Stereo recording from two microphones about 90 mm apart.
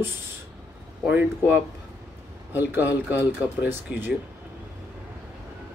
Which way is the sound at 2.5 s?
20° right (ahead or behind).